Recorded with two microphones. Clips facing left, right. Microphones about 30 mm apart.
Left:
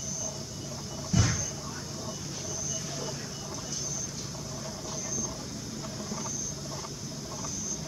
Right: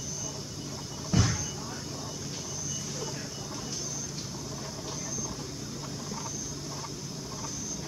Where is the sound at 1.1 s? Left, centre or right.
Right.